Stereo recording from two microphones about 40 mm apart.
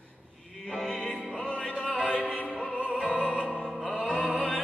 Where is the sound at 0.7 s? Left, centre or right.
Centre.